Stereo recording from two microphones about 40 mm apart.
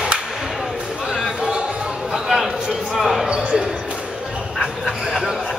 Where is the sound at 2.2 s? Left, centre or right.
Centre.